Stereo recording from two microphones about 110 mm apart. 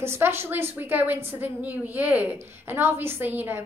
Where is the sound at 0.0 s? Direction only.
20° right (ahead or behind).